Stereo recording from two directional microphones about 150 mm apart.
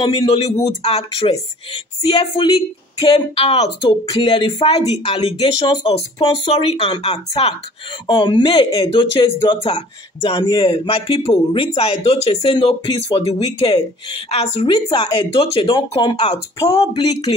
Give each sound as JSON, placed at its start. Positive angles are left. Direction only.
{"t": 0.0, "sound": "speech", "side_deg": 40}
{"t": 8.1, "sound": "speech", "side_deg": 30}
{"t": 14.7, "sound": "speech", "side_deg": 30}